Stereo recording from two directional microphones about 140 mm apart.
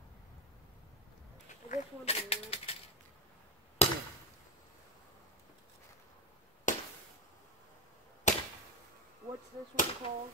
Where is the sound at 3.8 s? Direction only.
50° left (ahead or behind).